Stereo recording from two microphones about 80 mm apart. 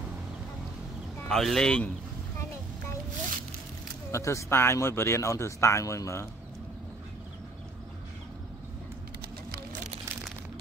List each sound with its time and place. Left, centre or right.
1.3 s speech: centre
4.1 s speech: left